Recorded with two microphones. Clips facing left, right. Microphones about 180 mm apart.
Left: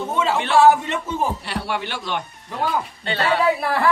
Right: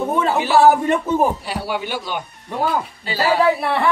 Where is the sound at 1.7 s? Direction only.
Centre (ahead or behind).